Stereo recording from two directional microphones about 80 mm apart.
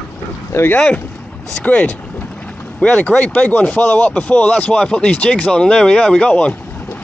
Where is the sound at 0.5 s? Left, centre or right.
Left.